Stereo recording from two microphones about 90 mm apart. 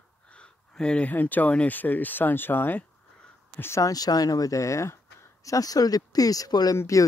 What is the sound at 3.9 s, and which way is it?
Speech, 45° left (ahead or behind).